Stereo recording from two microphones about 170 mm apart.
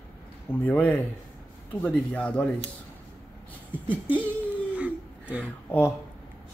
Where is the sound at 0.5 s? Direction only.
10° left (ahead or behind).